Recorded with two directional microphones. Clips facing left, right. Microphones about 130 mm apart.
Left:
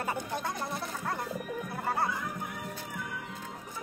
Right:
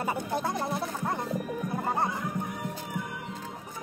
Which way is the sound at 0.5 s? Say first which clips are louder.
Right 5 dB; 25° right (ahead or behind).